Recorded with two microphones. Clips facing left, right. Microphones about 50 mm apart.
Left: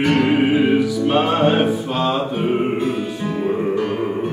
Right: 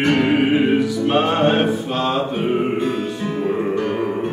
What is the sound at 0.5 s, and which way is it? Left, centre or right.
Music, right.